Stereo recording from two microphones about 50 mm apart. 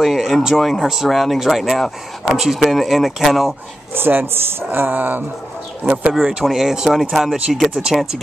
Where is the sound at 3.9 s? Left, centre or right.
Right.